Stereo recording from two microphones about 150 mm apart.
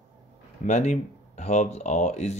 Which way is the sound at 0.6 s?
50° left (ahead or behind).